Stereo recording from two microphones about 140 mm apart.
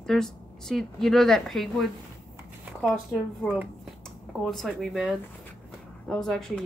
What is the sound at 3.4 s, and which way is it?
A woman's voice, 10° right (ahead or behind).